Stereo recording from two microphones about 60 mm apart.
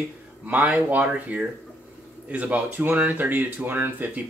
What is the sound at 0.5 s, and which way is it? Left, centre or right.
Speech, right.